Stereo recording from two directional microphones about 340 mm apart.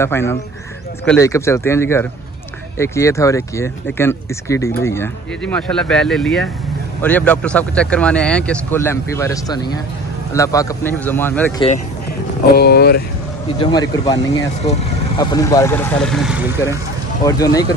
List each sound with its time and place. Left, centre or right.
0.0 s speech: centre
12.5 s speech: left
13.6 s speech: centre
17.2 s speech: centre